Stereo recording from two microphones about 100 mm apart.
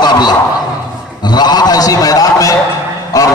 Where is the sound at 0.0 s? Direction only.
45° left (ahead or behind).